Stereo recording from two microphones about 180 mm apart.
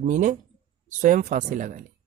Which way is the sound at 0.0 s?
45° right (ahead or behind).